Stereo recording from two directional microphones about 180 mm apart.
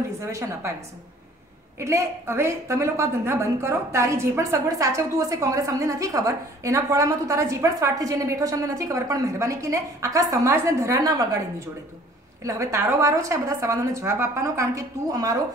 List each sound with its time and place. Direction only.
0.2 s a woman's voice: 15° right (ahead or behind)
1.8 s a woman's voice: 15° right (ahead or behind)
12.4 s a woman's voice: 15° right (ahead or behind)